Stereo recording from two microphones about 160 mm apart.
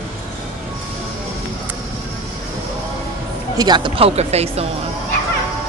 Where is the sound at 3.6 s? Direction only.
30° right (ahead or behind).